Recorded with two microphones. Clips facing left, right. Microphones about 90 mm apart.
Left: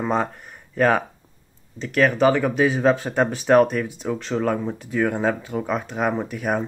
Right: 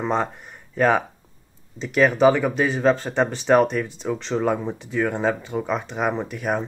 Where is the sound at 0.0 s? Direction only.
5° left (ahead or behind).